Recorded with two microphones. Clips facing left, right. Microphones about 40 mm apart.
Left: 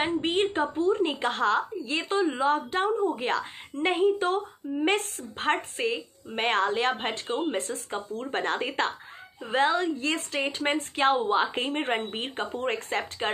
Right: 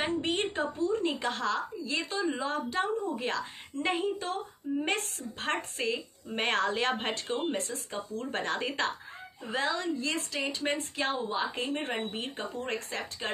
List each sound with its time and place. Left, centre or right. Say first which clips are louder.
0.0 s a woman's voice: left 5 dB; left
6.2 s speech: left 3 dB; centre
7.5 s a woman's voice: left 4 dB; left
8.2 s a woman's voice: left 3 dB; left